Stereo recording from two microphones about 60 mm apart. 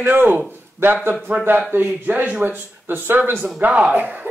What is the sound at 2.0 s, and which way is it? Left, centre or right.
Speech, right.